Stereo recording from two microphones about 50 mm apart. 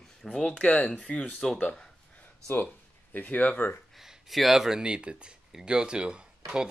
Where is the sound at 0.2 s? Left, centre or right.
Centre.